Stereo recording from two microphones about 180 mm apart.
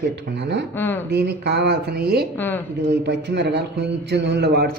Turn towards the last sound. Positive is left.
turn(degrees=-65)  # may be behind; listen again after turning